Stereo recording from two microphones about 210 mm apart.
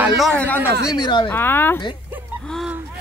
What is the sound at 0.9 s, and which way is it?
Speech, 20° left (ahead or behind).